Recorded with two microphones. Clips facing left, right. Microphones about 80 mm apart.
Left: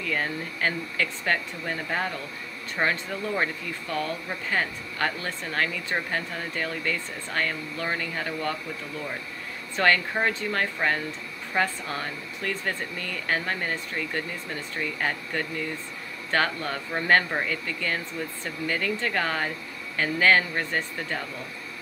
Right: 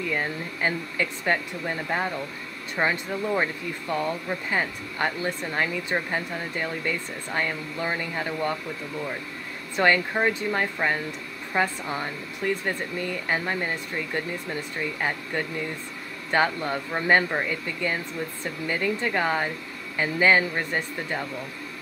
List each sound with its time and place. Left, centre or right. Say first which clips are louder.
0.0 s speech: right 1 dB; centre
9.8 s speech: right 1 dB; centre